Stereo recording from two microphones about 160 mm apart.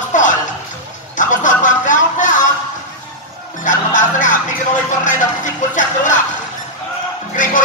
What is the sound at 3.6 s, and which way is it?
Speech, 55° left (ahead or behind).